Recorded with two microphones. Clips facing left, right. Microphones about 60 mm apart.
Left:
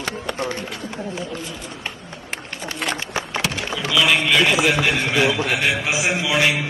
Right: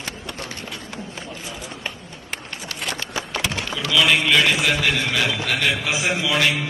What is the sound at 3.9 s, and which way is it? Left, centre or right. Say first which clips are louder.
Music: even; centre.